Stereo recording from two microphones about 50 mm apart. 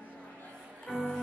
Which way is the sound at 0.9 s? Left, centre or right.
Centre.